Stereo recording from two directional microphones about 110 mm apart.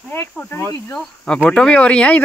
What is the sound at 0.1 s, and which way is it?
Speech, 20° left (ahead or behind).